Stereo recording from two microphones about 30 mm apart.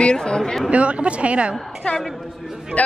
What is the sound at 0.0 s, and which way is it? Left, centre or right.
Speech, left.